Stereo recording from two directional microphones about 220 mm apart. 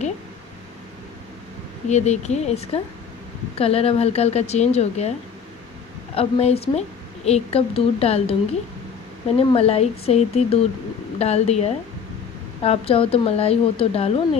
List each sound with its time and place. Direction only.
1.9 s speech: 30° left (ahead or behind)
6.1 s speech: 25° left (ahead or behind)
9.4 s speech: 25° left (ahead or behind)